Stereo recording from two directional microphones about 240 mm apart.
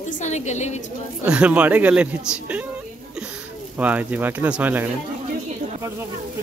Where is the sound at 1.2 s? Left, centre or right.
Centre.